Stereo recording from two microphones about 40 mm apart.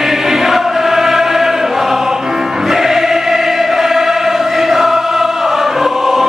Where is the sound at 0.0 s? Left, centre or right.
Centre.